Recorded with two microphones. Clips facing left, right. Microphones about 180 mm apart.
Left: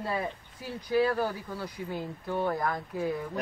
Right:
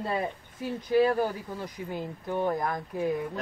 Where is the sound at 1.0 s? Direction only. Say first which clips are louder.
Right 3 dB; 20° right (ahead or behind).